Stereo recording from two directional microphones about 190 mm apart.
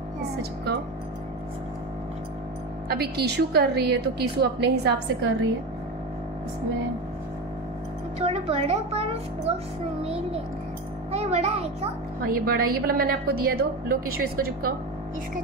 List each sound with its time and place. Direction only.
2.9 s a woman's voice: 55° right (ahead or behind)
8.2 s speech: 30° right (ahead or behind)
12.3 s a woman's voice: 50° right (ahead or behind)